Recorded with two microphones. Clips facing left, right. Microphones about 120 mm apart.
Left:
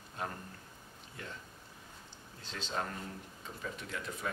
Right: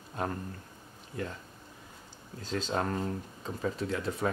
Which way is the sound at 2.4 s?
40° right (ahead or behind).